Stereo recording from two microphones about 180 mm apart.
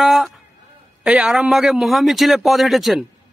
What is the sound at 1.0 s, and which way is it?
A woman's voice, 5° right (ahead or behind).